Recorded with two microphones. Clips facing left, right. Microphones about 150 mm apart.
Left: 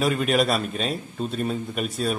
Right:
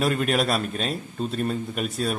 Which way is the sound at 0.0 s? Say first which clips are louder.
Left 1 dB; centre (ahead or behind).